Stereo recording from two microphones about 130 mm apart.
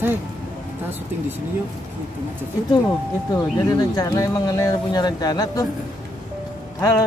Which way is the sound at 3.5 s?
30° left (ahead or behind).